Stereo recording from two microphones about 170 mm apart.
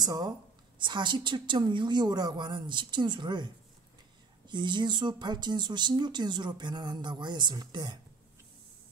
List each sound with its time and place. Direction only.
0.0 s speech: 25° right (ahead or behind)